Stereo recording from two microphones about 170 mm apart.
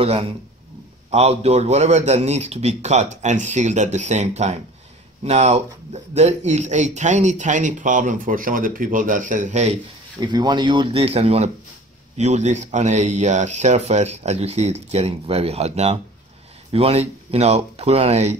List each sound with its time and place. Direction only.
0.0 s speech: 35° right (ahead or behind)
10.2 s speech: 25° right (ahead or behind); by 18.4 s 40° right (ahead or behind)